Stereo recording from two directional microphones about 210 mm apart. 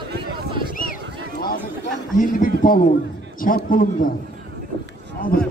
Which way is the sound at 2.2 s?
40° left (ahead or behind).